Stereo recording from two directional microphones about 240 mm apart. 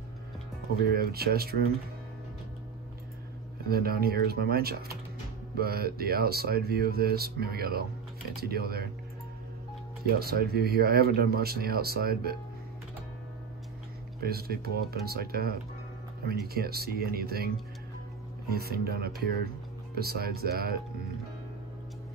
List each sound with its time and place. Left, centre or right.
0.9 s speech: right
3.6 s speech: right
10.1 s speech: right
14.2 s speech: right
16.5 s speech: right
18.5 s speech: right